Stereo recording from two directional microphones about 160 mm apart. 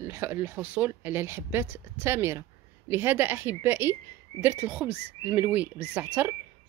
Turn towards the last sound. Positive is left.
turn(degrees=-10)  # may be behind; listen again after turning